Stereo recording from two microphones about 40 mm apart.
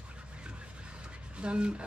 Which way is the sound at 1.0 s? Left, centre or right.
Right.